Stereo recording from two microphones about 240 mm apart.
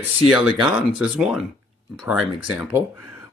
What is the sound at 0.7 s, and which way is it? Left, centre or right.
Speech, centre.